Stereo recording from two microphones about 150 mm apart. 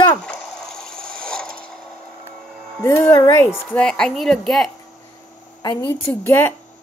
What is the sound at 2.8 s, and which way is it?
Speech, 15° left (ahead or behind).